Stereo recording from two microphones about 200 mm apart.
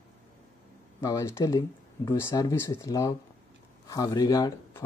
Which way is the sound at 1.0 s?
15° left (ahead or behind).